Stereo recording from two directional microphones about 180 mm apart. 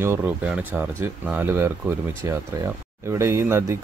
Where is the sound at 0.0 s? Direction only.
10° right (ahead or behind).